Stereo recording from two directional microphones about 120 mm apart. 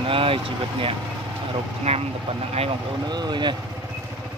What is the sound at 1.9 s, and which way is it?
Speech, 60° right (ahead or behind).